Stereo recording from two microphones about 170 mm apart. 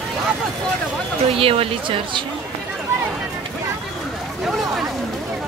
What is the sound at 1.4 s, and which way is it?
Speech, 35° right (ahead or behind).